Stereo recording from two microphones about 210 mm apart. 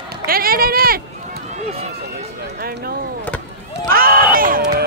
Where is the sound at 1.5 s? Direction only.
30° right (ahead or behind).